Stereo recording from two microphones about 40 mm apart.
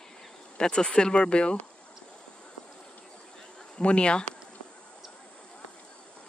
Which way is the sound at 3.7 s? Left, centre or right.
Left.